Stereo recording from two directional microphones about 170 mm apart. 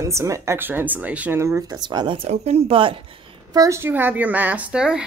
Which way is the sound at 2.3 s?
40° right (ahead or behind).